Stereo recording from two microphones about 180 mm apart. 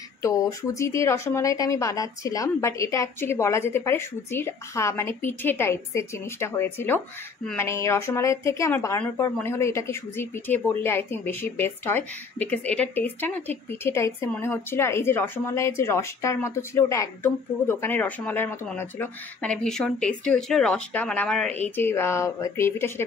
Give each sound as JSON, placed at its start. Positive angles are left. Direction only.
{"t": 0.2, "sound": "speech", "side_deg": 20}